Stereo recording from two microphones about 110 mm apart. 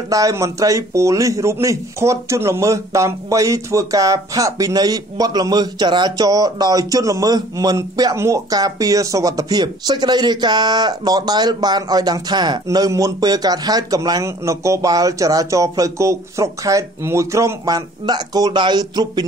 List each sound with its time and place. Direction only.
0.1 s a man's voice: 30° right (ahead or behind)